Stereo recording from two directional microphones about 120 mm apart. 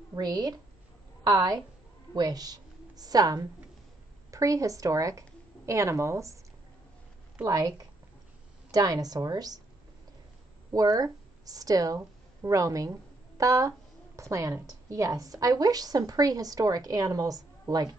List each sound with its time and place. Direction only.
0.1 s a woman's voice: 35° right (ahead or behind)
7.4 s a woman's voice: 30° right (ahead or behind)
10.7 s a woman's voice: 30° right (ahead or behind)